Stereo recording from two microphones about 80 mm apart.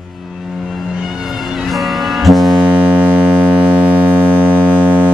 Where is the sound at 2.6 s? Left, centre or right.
Right.